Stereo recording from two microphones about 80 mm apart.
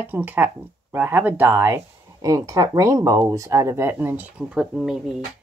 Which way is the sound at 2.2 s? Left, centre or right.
Right.